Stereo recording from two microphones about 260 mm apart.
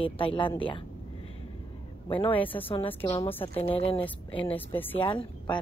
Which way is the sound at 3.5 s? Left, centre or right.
Left.